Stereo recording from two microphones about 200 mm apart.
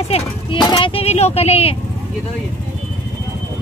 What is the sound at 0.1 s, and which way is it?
Speech, 25° left (ahead or behind).